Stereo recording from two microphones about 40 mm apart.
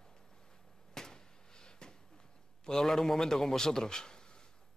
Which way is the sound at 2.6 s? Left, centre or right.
Centre.